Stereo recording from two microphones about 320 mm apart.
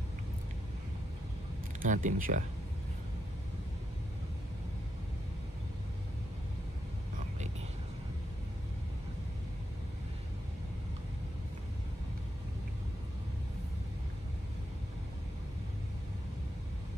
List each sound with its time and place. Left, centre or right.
1.8 s speech: right